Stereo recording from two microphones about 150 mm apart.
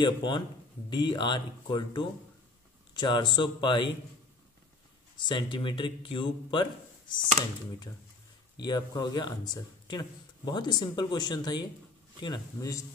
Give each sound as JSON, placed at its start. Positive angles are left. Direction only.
{"t": 0.0, "sound": "speech", "side_deg": 30}
{"t": 5.1, "sound": "speech", "side_deg": 30}
{"t": 8.5, "sound": "speech", "side_deg": 30}